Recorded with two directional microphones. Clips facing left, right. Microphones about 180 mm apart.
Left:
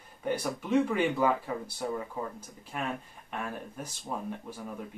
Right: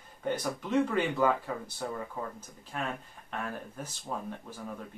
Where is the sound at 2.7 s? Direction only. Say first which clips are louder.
Left 1 dB; 10° left (ahead or behind).